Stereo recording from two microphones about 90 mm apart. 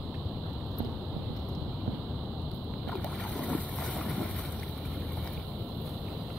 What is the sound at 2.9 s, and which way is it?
Boat, 15° left (ahead or behind).